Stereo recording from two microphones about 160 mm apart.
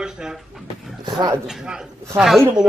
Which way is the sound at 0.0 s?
5° right (ahead or behind).